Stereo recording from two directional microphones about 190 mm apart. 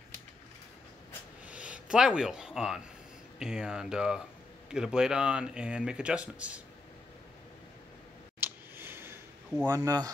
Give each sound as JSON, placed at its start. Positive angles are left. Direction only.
{"t": 1.5, "sound": "speech", "side_deg": -5}
{"t": 8.4, "sound": "clicking", "side_deg": -10}
{"t": 9.7, "sound": "speech", "side_deg": -20}